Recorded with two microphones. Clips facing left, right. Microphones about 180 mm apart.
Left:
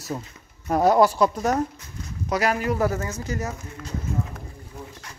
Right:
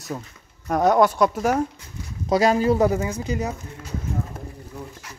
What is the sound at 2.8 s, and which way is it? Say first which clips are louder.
Speech: right 4 dB; 10° right (ahead or behind).